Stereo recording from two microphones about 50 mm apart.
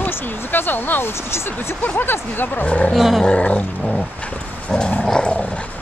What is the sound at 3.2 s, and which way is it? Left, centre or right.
Roaring cats, centre.